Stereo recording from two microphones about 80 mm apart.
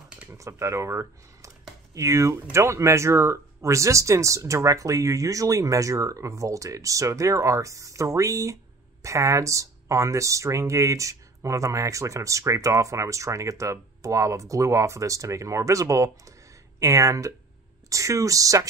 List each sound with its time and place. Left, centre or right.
0.3 s speech: right